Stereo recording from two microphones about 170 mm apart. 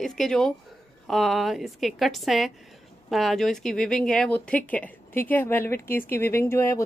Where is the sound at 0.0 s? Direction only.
5° left (ahead or behind).